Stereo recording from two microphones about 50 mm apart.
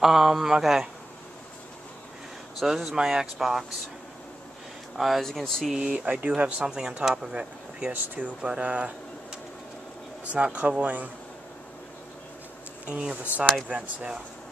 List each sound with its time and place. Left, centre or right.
0.0 s speech: centre
2.6 s speech: centre
4.9 s speech: centre
5.2 s speech: centre
5.8 s speech: centre
6.0 s speech: right
6.6 s speech: centre
7.9 s speech: right
8.4 s speech: centre
10.2 s speech: right
13.1 s speech: right